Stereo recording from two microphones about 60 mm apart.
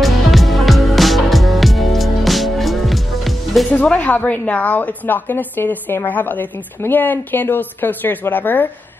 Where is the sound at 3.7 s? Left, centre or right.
Left.